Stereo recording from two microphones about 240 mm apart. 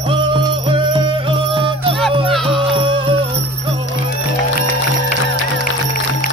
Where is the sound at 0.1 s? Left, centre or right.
Right.